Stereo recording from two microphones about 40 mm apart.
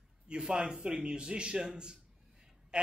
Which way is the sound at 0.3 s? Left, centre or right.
Right.